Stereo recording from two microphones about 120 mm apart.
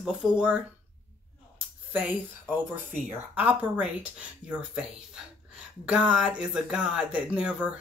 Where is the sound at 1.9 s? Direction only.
15° right (ahead or behind).